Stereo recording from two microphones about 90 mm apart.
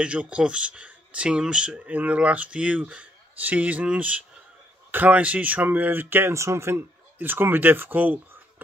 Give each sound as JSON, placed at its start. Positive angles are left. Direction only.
{"t": 0.0, "sound": "speech", "side_deg": -15}